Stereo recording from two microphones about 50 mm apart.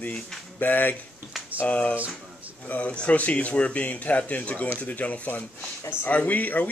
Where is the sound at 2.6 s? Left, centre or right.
Left.